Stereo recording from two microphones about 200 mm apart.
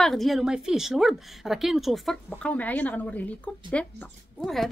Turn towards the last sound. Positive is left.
turn(degrees=0)  # may be behind; listen again after turning